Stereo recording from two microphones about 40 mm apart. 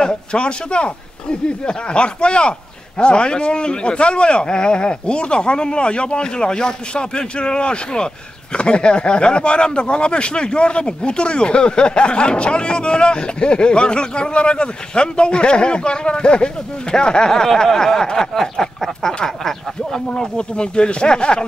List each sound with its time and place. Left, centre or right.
0.0 s speech: left
16.9 s a sound: left
20.1 s speech: left